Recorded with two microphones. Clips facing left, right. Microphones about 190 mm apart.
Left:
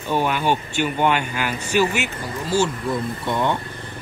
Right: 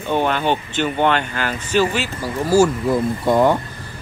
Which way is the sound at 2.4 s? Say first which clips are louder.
Right 7 dB; 65° right (ahead or behind).